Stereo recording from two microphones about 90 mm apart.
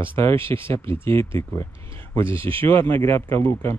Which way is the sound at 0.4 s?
80° right.